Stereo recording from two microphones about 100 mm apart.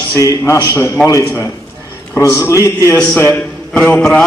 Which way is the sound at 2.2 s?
30° left (ahead or behind).